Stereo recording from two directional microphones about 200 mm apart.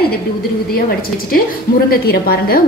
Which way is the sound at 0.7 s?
50° left (ahead or behind).